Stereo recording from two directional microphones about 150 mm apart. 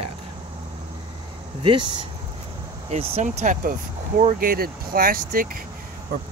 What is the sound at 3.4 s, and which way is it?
Speech, 65° right (ahead or behind).